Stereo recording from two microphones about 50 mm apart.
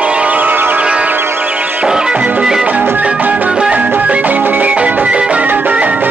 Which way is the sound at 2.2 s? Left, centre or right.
Right.